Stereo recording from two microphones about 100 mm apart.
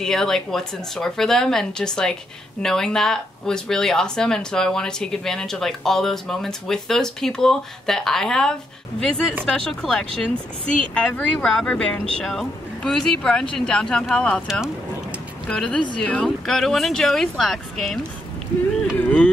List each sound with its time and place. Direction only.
0.0 s speech: 5° left (ahead or behind)
9.7 s speech: 5° left (ahead or behind)
15.4 s speech: 10° left (ahead or behind)
19.0 s music: 10° left (ahead or behind)